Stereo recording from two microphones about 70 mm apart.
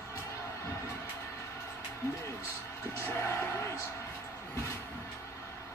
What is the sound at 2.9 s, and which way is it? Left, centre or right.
Music, left.